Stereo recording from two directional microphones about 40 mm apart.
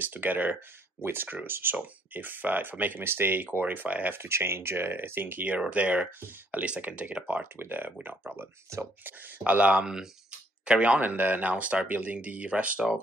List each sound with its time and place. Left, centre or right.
0.0 s speech: right
2.1 s speech: right
3.0 s speech: right
4.1 s speech: right
5.7 s speech: right
7.5 s speech: right
9.4 s speech: right
11.0 s speech: right